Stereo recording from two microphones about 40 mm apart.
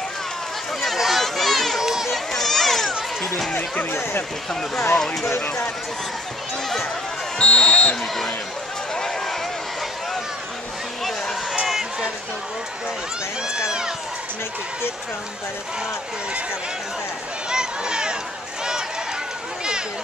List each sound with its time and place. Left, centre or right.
0.9 s a sound: centre
1.2 s run: centre
1.8 s run: centre
2.1 s a sound: centre
3.2 s music: centre
4.6 s speech: centre
7.3 s basketball bounce: left
13.5 s speech: centre
17.5 s a sound: centre